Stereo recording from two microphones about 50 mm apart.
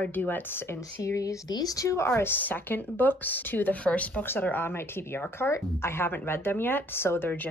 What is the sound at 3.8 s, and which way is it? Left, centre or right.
Speech, left.